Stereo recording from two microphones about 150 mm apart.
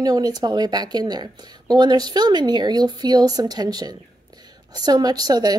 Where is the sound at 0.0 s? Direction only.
25° right (ahead or behind).